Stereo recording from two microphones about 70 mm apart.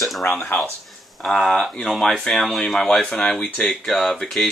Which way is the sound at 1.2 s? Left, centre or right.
Centre.